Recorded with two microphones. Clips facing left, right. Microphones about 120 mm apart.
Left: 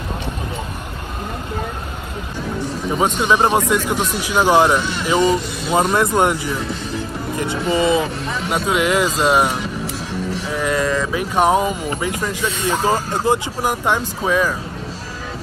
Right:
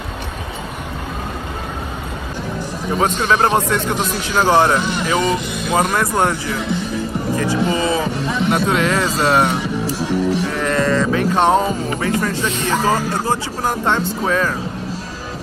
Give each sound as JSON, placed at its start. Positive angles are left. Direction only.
{"t": 3.0, "sound": "speech", "side_deg": 10}
{"t": 8.5, "sound": "speech", "side_deg": 5}
{"t": 9.8, "sound": "music", "side_deg": -70}
{"t": 10.5, "sound": "sheep", "side_deg": 10}
{"t": 12.0, "sound": "speech", "side_deg": 15}